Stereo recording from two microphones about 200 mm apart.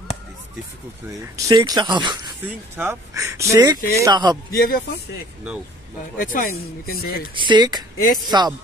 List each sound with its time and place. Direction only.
1.2 s speech: 15° right (ahead or behind)
2.4 s speech: 10° right (ahead or behind)
4.6 s speech: 50° left (ahead or behind)
7.3 s speech: 20° right (ahead or behind)